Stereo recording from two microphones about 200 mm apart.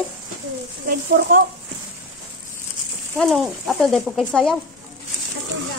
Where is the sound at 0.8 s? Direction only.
45° right (ahead or behind).